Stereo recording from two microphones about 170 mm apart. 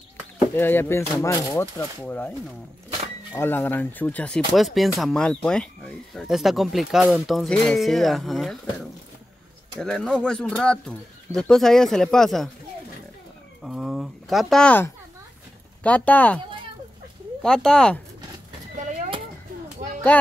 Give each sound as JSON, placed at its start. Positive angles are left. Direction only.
{"t": 0.6, "sound": "speech", "side_deg": 15}
{"t": 3.3, "sound": "speech", "side_deg": 10}
{"t": 9.8, "sound": "speech", "side_deg": 5}
{"t": 13.7, "sound": "speech", "side_deg": 0}
{"t": 17.4, "sound": "speech", "side_deg": 5}
{"t": 20.1, "sound": "music", "side_deg": 10}